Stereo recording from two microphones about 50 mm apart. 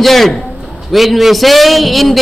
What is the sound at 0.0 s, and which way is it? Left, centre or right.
A man's voice, centre.